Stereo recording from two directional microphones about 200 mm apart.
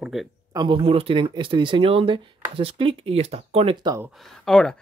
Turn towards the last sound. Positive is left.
turn(degrees=5)  # may be behind; listen again after turning